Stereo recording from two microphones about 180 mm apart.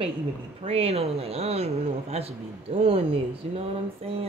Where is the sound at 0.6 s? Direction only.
35° right (ahead or behind).